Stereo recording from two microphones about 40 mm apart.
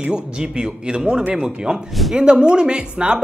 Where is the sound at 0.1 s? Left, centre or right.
Right.